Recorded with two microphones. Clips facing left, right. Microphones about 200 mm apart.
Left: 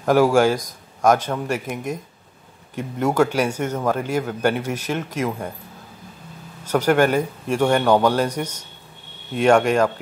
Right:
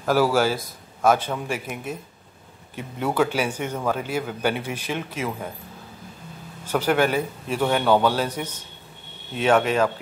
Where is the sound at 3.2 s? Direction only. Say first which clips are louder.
Left 3 dB; 10° right (ahead or behind).